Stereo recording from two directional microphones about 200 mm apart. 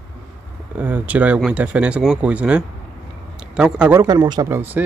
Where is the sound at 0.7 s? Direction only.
10° right (ahead or behind).